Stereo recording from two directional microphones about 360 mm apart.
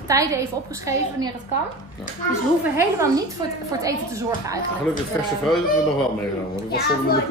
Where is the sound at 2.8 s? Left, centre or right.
Centre.